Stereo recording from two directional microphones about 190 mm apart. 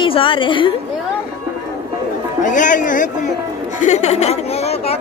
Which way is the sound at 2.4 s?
40° left (ahead or behind).